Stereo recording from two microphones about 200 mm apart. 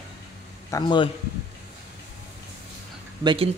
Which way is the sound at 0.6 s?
20° left (ahead or behind).